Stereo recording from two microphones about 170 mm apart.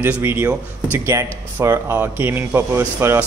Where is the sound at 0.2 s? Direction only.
10° right (ahead or behind).